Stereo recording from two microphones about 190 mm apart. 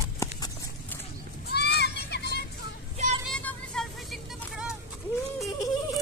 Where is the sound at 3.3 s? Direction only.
Centre (ahead or behind).